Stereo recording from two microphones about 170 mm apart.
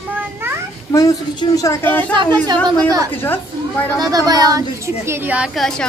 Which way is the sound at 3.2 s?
10° left (ahead or behind).